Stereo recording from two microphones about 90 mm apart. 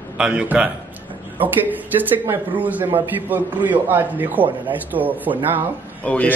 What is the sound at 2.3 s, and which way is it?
A man's voice, 20° right (ahead or behind).